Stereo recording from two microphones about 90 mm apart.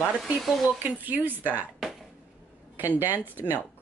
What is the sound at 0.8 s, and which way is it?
Speech, 20° right (ahead or behind).